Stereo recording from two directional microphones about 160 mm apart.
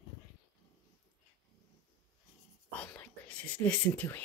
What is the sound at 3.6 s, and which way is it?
Speech, 10° left (ahead or behind).